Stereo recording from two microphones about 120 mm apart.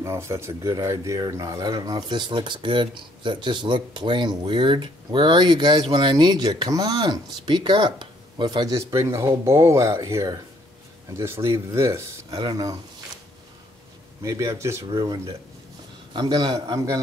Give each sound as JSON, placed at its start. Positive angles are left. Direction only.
{"t": 0.0, "sound": "speech", "side_deg": -25}
{"t": 12.4, "sound": "speech", "side_deg": -35}
{"t": 14.2, "sound": "speech", "side_deg": -25}
{"t": 16.1, "sound": "speech", "side_deg": -40}